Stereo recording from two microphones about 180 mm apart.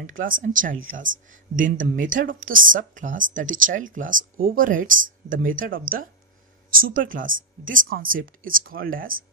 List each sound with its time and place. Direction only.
0.0 s speech: 50° right (ahead or behind)